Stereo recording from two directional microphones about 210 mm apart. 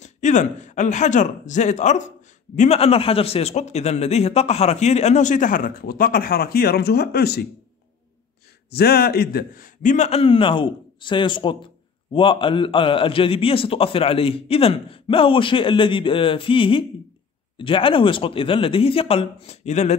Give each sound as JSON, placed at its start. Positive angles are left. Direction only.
{"t": 0.0, "sound": "a man's voice", "side_deg": 35}
{"t": 8.6, "sound": "a man's voice", "side_deg": 50}